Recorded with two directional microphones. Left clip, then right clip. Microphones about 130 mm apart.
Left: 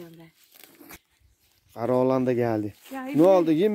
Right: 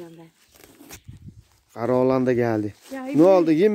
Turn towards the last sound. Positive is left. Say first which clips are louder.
# right 3 dB
turn(degrees=10)  # may be behind; listen again after turning